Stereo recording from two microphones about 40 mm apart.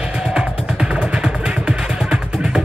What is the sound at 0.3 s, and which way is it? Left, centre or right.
Music, right.